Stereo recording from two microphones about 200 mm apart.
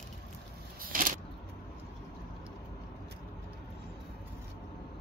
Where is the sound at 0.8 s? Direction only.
45° right (ahead or behind).